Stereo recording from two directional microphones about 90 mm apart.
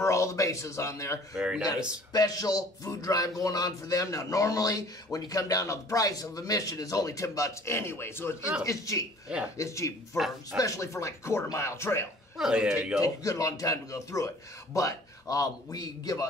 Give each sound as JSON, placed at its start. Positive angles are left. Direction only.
{"t": 0.0, "sound": "a man's voice", "side_deg": 35}
{"t": 1.3, "sound": "a man's voice", "side_deg": -10}
{"t": 2.1, "sound": "a man's voice", "side_deg": 45}
{"t": 8.6, "sound": "a man's voice", "side_deg": 40}
{"t": 10.1, "sound": "speech", "side_deg": -5}
{"t": 10.6, "sound": "a man's voice", "side_deg": 35}
{"t": 12.4, "sound": "a man's voice", "side_deg": -5}
{"t": 13.0, "sound": "a man's voice", "side_deg": 40}